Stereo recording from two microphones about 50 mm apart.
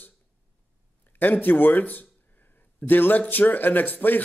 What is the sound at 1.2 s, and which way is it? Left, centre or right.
Speech, left.